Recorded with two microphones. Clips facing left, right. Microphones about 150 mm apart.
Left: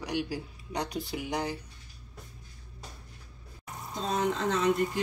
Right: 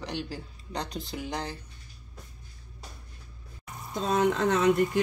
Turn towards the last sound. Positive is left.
turn(degrees=-60)  # may be behind; listen again after turning